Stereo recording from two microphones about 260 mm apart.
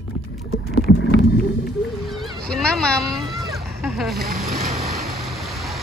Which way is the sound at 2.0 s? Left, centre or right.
Centre.